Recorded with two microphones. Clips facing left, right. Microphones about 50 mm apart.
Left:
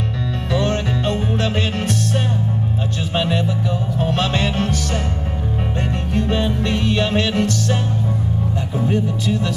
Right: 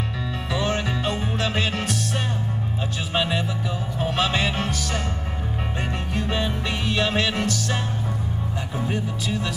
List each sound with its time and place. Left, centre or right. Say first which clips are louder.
0.5 s music: left 4 dB; centre
6.1 s music: left 6 dB; centre
8.7 s music: left 7 dB; centre